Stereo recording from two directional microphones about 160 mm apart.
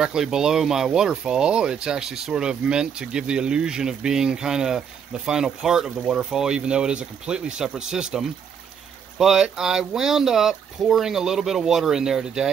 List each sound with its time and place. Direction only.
0.0 s speech: 5° right (ahead or behind)